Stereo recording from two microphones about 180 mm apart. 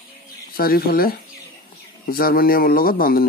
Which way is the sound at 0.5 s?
55° left (ahead or behind).